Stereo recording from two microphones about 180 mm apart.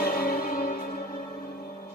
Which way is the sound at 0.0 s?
55° left (ahead or behind).